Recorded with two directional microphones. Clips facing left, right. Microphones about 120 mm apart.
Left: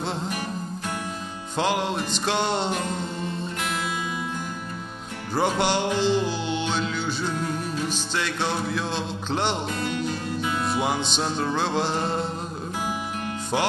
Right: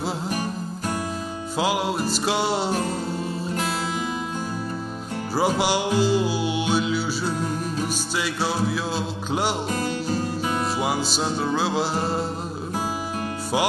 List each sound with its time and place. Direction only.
1.6 s music: 5° right (ahead or behind)
5.3 s music: 5° right (ahead or behind)
9.7 s music: 35° right (ahead or behind)
10.6 s music: 5° right (ahead or behind)